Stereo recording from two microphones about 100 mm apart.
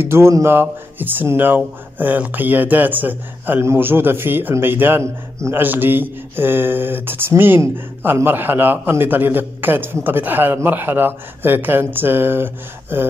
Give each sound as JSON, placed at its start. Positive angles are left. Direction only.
{"t": 0.0, "sound": "speech", "side_deg": -25}